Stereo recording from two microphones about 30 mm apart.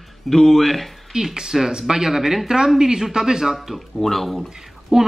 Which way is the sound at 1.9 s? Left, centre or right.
Centre.